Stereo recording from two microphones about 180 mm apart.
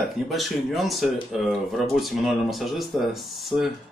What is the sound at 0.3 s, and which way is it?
Speech, centre (ahead or behind).